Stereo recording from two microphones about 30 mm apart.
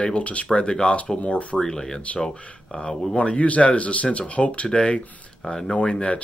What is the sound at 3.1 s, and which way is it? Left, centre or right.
Speech, left.